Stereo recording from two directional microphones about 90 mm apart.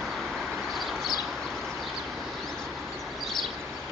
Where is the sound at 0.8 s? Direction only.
Centre (ahead or behind).